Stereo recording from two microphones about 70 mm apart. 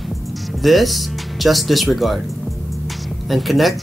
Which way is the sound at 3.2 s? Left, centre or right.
Centre.